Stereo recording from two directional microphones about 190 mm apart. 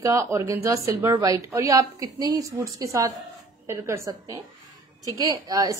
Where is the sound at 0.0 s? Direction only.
15° right (ahead or behind).